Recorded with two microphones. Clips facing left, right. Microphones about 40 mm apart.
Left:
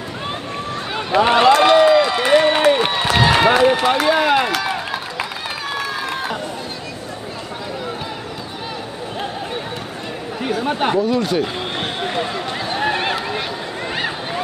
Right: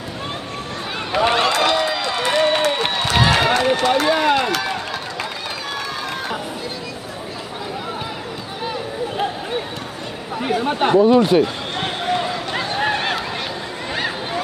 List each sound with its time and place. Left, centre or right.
0.9 s a sound: centre
4.6 s run: centre
10.4 s chatter: centre
11.0 s speech: right
11.8 s run: centre
12.7 s a sound: centre